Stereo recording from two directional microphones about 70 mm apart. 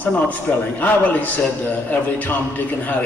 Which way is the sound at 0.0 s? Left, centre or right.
Left.